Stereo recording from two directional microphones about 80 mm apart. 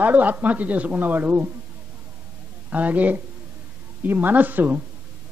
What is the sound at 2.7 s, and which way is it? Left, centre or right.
Speech, right.